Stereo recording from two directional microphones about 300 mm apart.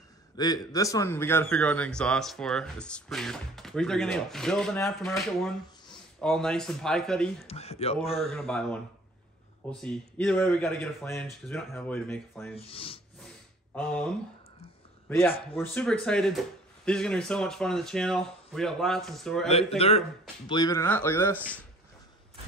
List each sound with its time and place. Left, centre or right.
0.4 s a man's voice: centre
7.4 s speech: centre
8.2 s a man's voice: centre
12.5 s speech: centre
13.7 s a man's voice: centre
20.4 s speech: centre